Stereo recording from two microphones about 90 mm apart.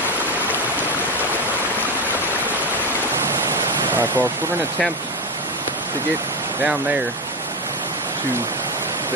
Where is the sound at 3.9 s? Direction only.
20° right (ahead or behind).